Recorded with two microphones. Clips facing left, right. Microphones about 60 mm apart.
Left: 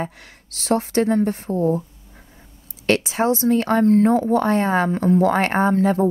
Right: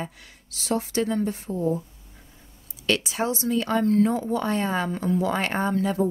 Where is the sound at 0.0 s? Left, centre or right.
Left.